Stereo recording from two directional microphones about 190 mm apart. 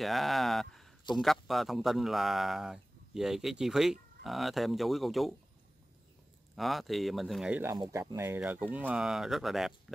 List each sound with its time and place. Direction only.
0.0 s a man's voice: centre (ahead or behind)
6.5 s a man's voice: centre (ahead or behind)
7.7 s a man's voice: 20° right (ahead or behind); by 9.9 s centre (ahead or behind)